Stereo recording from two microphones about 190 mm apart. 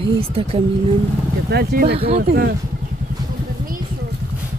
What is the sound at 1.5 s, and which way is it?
Speech, 55° right (ahead or behind).